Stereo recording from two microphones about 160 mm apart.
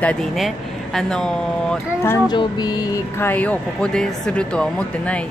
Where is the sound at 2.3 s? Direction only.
25° left (ahead or behind).